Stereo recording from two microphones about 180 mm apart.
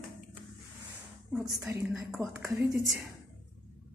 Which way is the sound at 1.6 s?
15° right (ahead or behind).